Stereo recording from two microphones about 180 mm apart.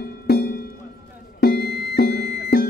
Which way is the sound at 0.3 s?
60° left (ahead or behind).